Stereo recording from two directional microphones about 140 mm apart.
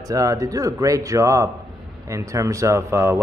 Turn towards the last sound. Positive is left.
turn(degrees=-20)  # may be behind; listen again after turning